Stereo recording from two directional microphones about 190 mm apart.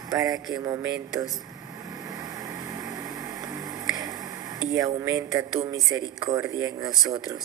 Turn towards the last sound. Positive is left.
turn(degrees=-20)  # may be behind; listen again after turning